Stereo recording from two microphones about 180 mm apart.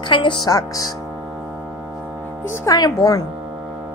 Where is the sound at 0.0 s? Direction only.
25° left (ahead or behind).